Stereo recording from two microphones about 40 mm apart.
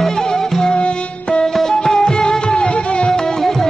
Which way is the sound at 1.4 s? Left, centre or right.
Centre.